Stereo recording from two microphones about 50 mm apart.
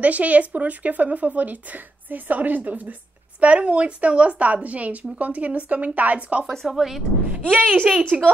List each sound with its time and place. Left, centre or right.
0.0 s a woman's voice: right
6.7 s speech: centre
7.2 s a woman's voice: right
8.1 s speech: centre